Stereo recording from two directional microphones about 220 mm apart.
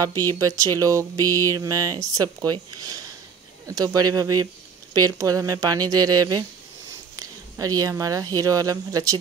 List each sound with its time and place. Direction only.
0.2 s speech: 15° right (ahead or behind)